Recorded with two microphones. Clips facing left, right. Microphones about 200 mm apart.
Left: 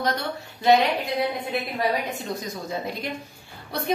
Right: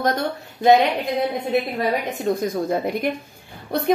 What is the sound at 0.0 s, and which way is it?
Speech, 50° right (ahead or behind).